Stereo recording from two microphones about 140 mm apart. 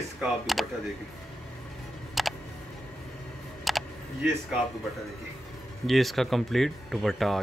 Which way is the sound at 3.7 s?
Centre (ahead or behind).